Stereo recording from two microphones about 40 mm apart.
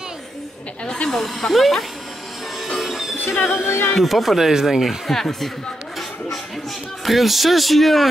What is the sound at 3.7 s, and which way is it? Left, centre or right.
Speech, left.